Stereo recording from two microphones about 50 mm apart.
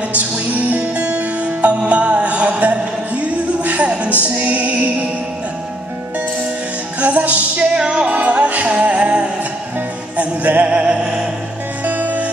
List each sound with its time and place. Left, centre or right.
0.1 s music: right
7.0 s music: right
7.7 s music: centre
11.8 s music: right